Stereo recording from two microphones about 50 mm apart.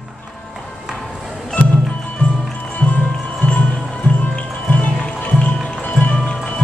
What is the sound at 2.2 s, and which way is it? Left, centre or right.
Music, left.